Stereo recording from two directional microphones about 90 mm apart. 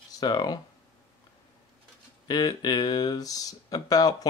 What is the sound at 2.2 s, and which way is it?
Speech, 50° left (ahead or behind).